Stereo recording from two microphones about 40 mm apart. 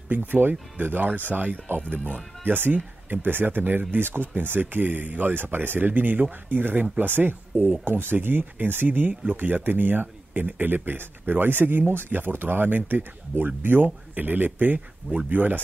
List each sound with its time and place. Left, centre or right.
0.1 s speech: right
2.4 s speech: right
7.8 s speech: right